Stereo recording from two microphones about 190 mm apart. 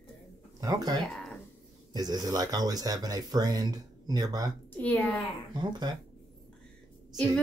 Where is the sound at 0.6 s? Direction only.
20° right (ahead or behind).